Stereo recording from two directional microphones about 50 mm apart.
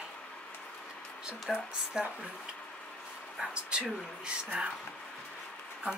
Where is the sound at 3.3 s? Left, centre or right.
Centre.